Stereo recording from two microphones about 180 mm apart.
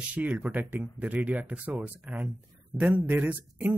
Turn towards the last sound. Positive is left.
turn(degrees=-10)  # may be behind; listen again after turning